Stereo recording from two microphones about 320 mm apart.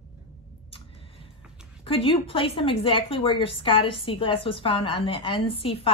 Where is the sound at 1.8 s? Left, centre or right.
Centre.